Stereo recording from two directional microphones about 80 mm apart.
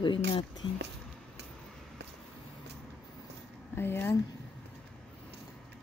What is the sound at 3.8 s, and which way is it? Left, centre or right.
Speech, left.